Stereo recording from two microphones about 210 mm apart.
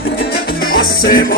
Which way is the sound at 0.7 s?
45° left (ahead or behind).